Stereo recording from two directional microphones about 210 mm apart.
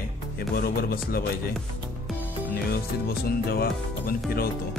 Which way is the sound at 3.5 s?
45° left (ahead or behind).